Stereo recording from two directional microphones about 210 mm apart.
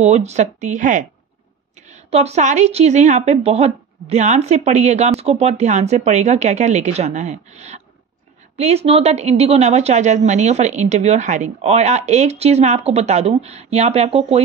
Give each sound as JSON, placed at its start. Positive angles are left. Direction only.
{"t": 0.0, "sound": "a woman's voice", "side_deg": -30}